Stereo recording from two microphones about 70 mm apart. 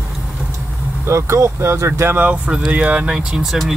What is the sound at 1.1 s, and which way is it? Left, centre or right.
Speech, right.